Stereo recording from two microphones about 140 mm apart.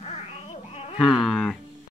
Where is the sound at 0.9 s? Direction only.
Centre (ahead or behind).